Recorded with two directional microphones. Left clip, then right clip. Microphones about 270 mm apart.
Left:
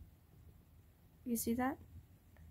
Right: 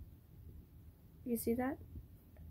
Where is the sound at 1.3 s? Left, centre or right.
Centre.